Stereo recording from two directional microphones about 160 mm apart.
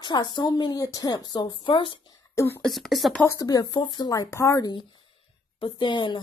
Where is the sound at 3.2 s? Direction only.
20° left (ahead or behind).